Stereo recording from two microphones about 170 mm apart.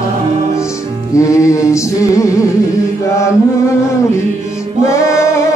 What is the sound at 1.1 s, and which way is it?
Music, 20° left (ahead or behind).